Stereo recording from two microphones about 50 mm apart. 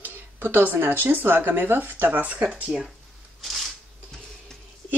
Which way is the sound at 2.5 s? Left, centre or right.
Right.